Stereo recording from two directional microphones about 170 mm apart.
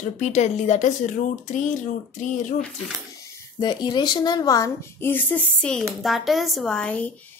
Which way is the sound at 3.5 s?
25° left (ahead or behind).